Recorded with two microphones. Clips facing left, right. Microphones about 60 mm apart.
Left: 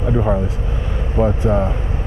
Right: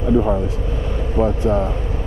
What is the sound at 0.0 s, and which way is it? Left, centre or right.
Vehicle, left.